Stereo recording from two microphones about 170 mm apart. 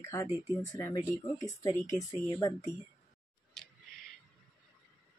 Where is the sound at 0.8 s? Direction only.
20° left (ahead or behind).